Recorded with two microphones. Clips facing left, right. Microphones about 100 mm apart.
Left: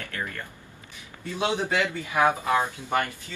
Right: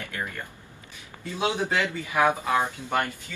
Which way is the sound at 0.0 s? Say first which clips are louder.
Even; 20° right (ahead or behind).